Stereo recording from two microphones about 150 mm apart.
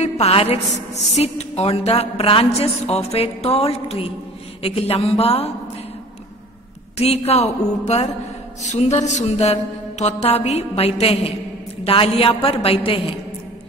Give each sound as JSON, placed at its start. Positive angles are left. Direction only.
{"t": 0.0, "sound": "music", "side_deg": 45}
{"t": 7.0, "sound": "music", "side_deg": 45}